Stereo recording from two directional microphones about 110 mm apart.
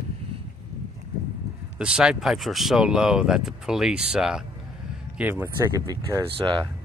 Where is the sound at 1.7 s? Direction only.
10° right (ahead or behind).